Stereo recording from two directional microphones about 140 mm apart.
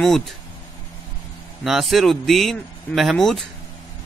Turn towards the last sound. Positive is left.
turn(degrees=0)  # may be behind; listen again after turning